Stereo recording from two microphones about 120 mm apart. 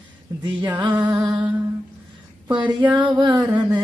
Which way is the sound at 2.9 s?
35° right (ahead or behind).